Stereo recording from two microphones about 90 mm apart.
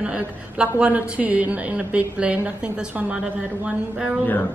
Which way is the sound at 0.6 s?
15° right (ahead or behind).